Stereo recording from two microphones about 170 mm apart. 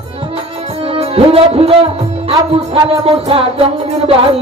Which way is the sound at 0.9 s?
35° right (ahead or behind).